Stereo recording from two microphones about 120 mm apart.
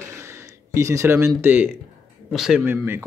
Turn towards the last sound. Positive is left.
turn(degrees=-15)  # may be behind; listen again after turning